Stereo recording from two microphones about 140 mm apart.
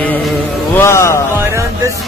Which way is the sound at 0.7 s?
20° left (ahead or behind).